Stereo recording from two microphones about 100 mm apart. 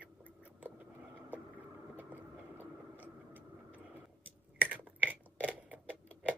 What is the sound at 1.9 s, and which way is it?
Vehicle, 20° right (ahead or behind).